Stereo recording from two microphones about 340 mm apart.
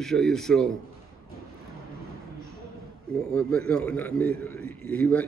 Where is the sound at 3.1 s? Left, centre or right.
Centre.